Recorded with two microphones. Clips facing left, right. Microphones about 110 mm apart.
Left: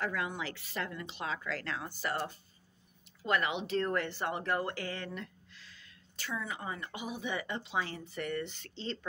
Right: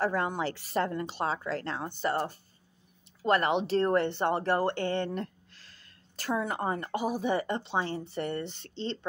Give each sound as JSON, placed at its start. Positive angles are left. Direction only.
{"t": 0.0, "sound": "speech", "side_deg": -35}
{"t": 3.3, "sound": "speech", "side_deg": -40}
{"t": 6.1, "sound": "speech", "side_deg": -50}